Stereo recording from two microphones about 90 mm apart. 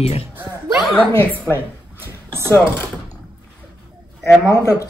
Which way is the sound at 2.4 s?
30° left (ahead or behind).